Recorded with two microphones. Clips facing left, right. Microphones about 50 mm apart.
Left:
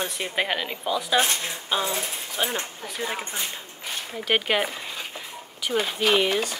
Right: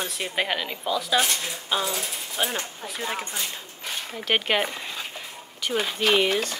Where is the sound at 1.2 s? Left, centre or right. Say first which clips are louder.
Left 1 dB; left.